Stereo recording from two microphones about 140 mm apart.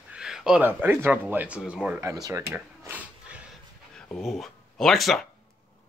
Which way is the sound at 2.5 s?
10° right (ahead or behind).